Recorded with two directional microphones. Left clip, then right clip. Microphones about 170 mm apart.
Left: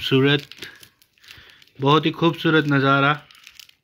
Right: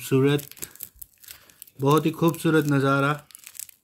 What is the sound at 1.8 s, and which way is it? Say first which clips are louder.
Speech: left 3 dB; 10° right (ahead or behind).